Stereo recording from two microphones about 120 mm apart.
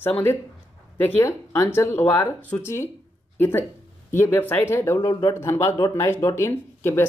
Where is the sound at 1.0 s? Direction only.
20° left (ahead or behind).